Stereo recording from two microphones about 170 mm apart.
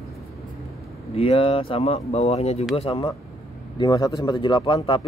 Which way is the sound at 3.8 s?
20° left (ahead or behind).